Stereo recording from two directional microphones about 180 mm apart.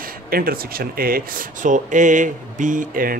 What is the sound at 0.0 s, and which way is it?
Speech, 55° right (ahead or behind).